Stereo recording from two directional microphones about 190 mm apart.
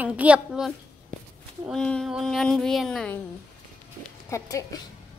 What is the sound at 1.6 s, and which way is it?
A woman's voice, 5° left (ahead or behind).